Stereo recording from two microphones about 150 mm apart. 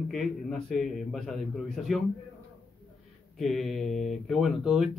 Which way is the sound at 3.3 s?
Centre (ahead or behind).